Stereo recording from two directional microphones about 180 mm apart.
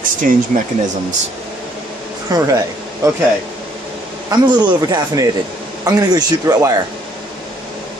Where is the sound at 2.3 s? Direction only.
20° right (ahead or behind).